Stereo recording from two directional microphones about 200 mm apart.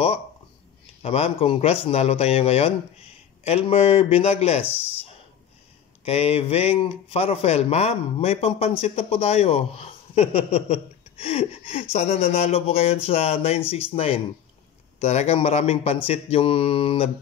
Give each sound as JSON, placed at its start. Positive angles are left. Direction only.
{"t": 1.0, "sound": "speech", "side_deg": 30}
{"t": 6.0, "sound": "speech", "side_deg": 30}